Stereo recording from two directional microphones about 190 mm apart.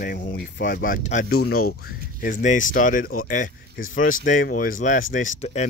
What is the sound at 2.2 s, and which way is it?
Speech, 45° left (ahead or behind).